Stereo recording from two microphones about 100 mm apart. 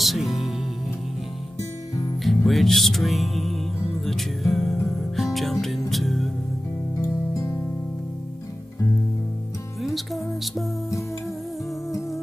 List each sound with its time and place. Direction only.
0.0 s music: centre (ahead or behind)
2.2 s music: centre (ahead or behind)
7.0 s music: 30° left (ahead or behind)
9.8 s music: centre (ahead or behind)